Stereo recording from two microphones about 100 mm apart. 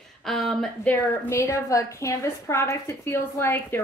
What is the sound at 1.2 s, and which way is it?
A woman's voice, 30° left (ahead or behind).